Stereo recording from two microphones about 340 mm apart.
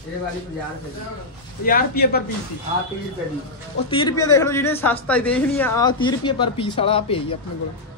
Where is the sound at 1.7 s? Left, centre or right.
Left.